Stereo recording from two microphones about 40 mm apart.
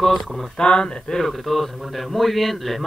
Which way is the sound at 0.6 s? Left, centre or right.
Left.